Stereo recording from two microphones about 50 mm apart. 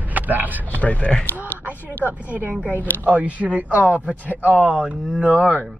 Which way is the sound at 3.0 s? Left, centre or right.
Right.